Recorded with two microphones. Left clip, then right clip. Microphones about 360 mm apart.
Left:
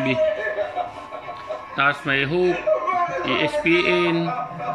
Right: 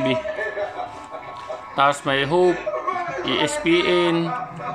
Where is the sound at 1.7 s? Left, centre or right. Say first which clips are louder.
Right 1 dB; centre.